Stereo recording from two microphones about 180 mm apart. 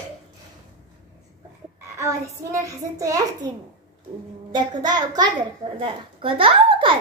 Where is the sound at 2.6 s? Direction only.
15° right (ahead or behind).